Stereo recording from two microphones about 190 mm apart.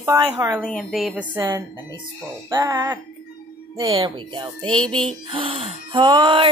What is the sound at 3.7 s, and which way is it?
Speech, 20° right (ahead or behind).